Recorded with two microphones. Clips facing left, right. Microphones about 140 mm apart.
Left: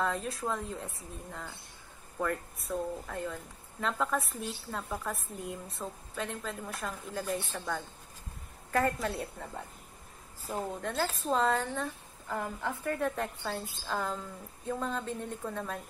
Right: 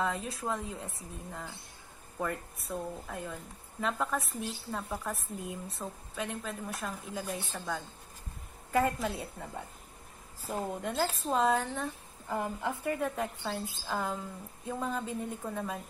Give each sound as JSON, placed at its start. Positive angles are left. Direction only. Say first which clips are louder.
{"t": 0.0, "sound": "speech", "louder": "left 1 dB", "side_deg": 0}
{"t": 10.5, "sound": "speech", "louder": "even", "side_deg": -15}
{"t": 12.3, "sound": "speech", "louder": "right 2 dB", "side_deg": -15}